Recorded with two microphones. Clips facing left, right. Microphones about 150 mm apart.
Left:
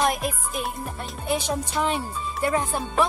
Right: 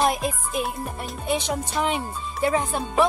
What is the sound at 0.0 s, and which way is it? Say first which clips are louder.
Music: right 1 dB; centre (ahead or behind).